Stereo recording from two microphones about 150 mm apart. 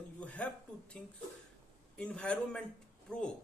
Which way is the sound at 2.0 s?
10° left (ahead or behind).